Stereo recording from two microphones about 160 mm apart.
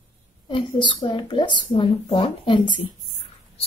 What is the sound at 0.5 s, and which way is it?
Speech, 30° left (ahead or behind).